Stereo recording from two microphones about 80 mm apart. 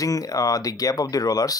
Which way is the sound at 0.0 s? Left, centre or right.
Left.